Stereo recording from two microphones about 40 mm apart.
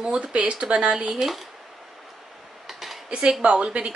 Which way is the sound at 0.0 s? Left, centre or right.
Centre.